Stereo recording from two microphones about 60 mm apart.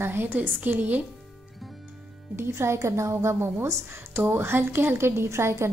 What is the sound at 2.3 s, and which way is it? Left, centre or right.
A woman's voice, right.